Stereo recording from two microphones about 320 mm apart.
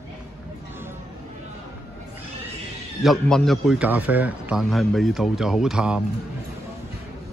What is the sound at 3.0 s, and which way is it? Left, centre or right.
A man's voice, centre.